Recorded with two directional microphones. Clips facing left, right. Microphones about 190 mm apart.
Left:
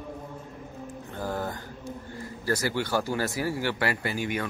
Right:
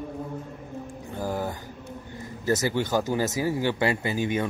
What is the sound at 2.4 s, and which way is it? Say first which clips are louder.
A man's voice: right 3 dB; 20° right (ahead or behind).